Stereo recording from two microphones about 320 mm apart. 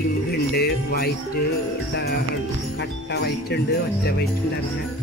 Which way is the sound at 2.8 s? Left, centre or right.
Left.